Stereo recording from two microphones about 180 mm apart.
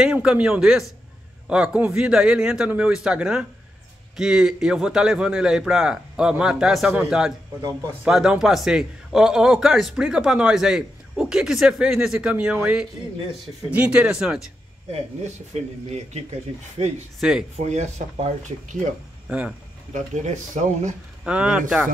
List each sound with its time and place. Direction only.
0.0 s a man's voice: 5° right (ahead or behind)
14.9 s speech: 40° right (ahead or behind)
17.2 s a man's voice: 5° right (ahead or behind)
17.6 s speech: 40° right (ahead or behind)
19.2 s speech: 10° right (ahead or behind)
19.9 s speech: 40° right (ahead or behind)
21.2 s a man's voice: 5° right (ahead or behind)